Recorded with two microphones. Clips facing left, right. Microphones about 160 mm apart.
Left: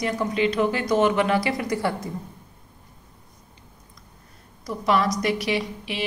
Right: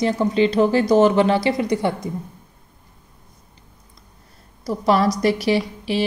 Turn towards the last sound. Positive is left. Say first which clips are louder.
# right 6 dB
turn(degrees=-35)  # may be behind; listen again after turning